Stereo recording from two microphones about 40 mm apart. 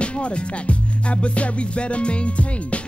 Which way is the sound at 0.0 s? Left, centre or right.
Left.